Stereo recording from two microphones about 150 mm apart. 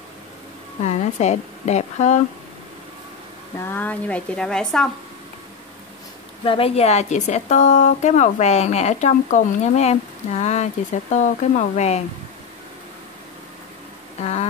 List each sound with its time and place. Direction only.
0.8 s a woman's voice: 50° left (ahead or behind)
3.5 s a woman's voice: 10° left (ahead or behind)
6.4 s a woman's voice: 40° left (ahead or behind)
14.2 s a woman's voice: 45° left (ahead or behind)